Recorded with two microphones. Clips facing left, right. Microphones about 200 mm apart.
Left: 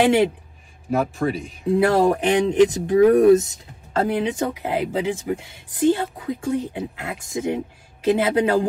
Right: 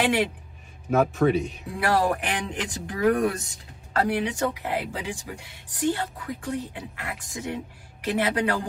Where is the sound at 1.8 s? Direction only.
25° left (ahead or behind).